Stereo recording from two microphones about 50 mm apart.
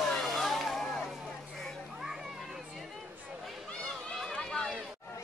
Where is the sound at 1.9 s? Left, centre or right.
Centre.